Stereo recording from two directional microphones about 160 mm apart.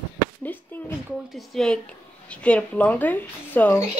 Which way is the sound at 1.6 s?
Centre (ahead or behind).